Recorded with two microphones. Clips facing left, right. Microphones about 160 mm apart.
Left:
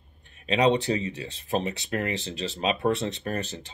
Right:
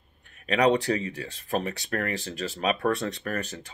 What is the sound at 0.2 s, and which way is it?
Speech, 25° left (ahead or behind).